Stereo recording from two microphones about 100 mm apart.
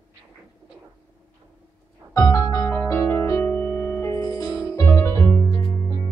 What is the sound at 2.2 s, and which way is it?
Music, 30° left (ahead or behind).